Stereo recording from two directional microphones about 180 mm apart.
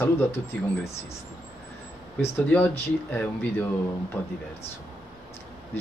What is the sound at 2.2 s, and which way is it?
Speech, 10° left (ahead or behind).